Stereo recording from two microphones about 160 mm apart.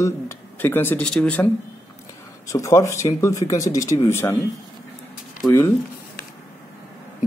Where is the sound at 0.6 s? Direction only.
10° left (ahead or behind).